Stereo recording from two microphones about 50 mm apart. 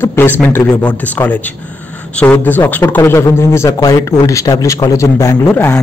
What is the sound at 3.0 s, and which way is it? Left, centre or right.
Speech, left.